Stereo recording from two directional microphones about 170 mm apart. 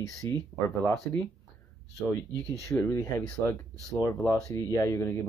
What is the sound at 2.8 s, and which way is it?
Speech, 15° left (ahead or behind).